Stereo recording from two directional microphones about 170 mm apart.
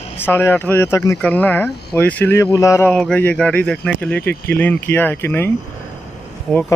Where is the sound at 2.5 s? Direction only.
20° left (ahead or behind).